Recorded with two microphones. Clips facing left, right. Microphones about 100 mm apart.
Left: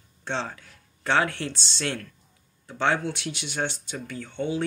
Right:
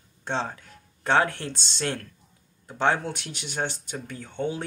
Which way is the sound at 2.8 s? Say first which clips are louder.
Right 1 dB; 40° right (ahead or behind).